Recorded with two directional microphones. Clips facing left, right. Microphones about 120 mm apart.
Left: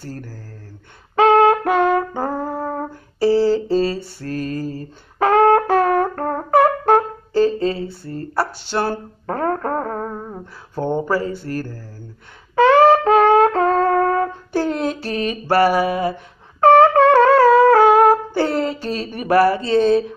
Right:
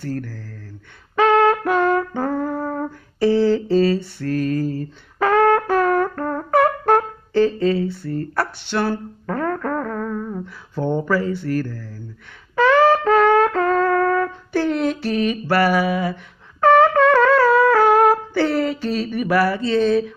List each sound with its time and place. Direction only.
0.0 s speech: 35° left (ahead or behind)
1.2 s brass instrument: 30° left (ahead or behind)
8.0 s speech: 35° left (ahead or behind)
9.2 s music: 35° left (ahead or behind)
11.1 s speech: 40° left (ahead or behind)
12.7 s brass instrument: 35° left (ahead or behind)
14.5 s a sound: 40° left (ahead or behind)
15.5 s speech: 35° left (ahead or behind)
16.6 s wind instrument: 40° left (ahead or behind)
18.0 s speech: 40° left (ahead or behind)